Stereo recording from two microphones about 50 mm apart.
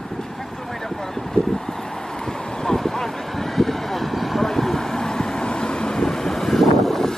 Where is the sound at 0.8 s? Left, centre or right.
Centre.